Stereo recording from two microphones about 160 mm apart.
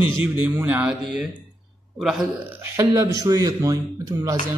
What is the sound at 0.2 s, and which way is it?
Speech, 10° right (ahead or behind).